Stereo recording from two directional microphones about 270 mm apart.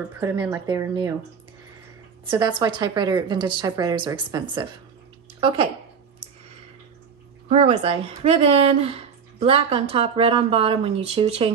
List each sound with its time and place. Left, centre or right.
0.2 s a woman's voice: centre
2.2 s a woman's voice: centre
7.4 s speech: right